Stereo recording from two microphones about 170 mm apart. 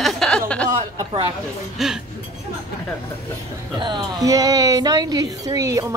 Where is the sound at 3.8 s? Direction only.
25° right (ahead or behind).